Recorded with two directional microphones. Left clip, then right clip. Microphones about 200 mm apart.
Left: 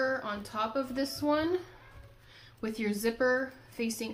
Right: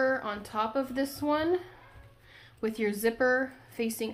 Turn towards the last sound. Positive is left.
turn(degrees=-35)  # may be behind; listen again after turning